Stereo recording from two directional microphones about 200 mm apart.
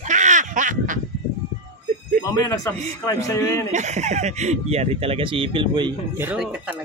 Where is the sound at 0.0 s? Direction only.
40° right (ahead or behind).